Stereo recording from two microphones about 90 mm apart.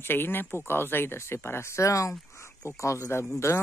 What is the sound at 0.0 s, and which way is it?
Speech, 25° left (ahead or behind).